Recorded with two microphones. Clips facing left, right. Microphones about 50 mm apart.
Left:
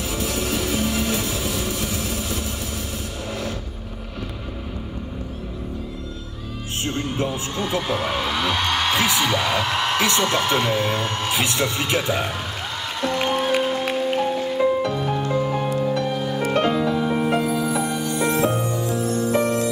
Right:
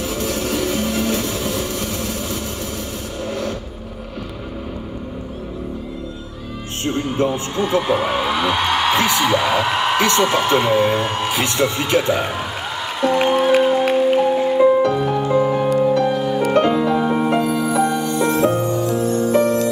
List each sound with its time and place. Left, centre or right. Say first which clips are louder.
0.1 s music: right 2 dB; centre
6.9 s a man's voice: right 6 dB; centre
13.0 s music: right 6 dB; centre
16.8 s music: right 4 dB; centre
17.4 s music: right 4 dB; centre